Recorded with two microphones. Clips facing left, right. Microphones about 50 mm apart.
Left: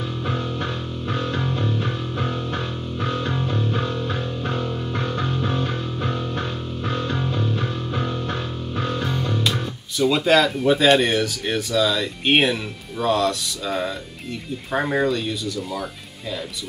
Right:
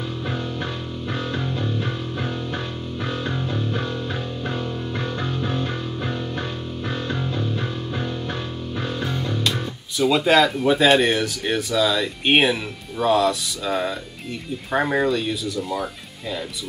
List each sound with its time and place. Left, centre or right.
1.6 s music: centre
3.3 s music: centre
3.9 s music: centre
7.3 s music: centre
8.8 s speech: centre